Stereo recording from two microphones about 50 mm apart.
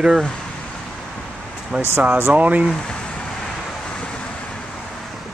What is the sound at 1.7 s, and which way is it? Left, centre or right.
Speech, right.